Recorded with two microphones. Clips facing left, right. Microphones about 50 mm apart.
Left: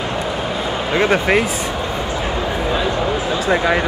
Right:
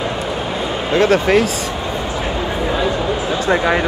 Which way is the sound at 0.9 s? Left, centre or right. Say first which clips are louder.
Right 3 dB; centre.